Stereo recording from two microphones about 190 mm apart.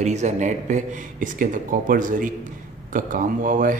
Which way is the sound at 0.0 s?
40° right (ahead or behind).